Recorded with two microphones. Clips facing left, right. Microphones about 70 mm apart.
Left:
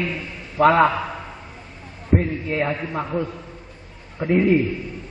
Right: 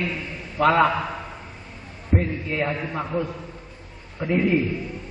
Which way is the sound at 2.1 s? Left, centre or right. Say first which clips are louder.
Left 3 dB; centre.